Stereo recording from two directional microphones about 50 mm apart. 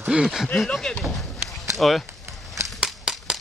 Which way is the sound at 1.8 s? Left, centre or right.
Centre.